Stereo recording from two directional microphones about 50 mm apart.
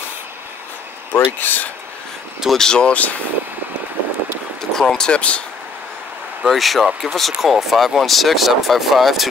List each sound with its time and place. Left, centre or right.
1.1 s speech: left
2.5 s speech: centre
2.8 s speech: left
4.7 s speech: centre
6.4 s speech: centre